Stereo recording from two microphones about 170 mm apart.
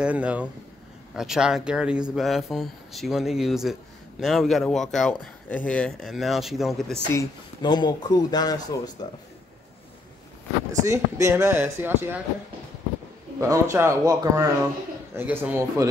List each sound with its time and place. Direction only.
0.0 s speech: 5° right (ahead or behind)
7.2 s speech: 25° left (ahead or behind)
10.7 s speech: 20° right (ahead or behind)
13.4 s speech: 15° right (ahead or behind)